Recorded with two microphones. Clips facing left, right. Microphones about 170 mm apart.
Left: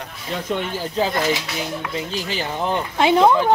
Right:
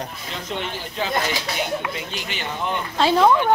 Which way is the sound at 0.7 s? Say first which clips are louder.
Left 6 dB; 35° left (ahead or behind).